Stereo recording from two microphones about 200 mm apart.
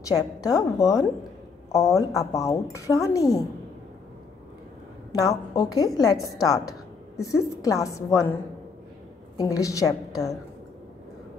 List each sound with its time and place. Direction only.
0.1 s a woman's voice: 20° left (ahead or behind)
5.1 s a woman's voice: 15° left (ahead or behind)
9.4 s a woman's voice: 15° left (ahead or behind)